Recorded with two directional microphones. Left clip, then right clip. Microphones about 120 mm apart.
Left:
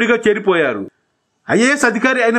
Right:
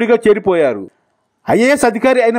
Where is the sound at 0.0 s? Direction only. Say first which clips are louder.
Right 3 dB; 50° right (ahead or behind).